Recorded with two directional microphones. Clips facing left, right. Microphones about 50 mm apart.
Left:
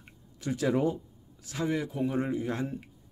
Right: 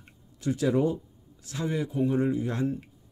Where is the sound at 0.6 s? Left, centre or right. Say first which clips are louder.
Right 2 dB; left.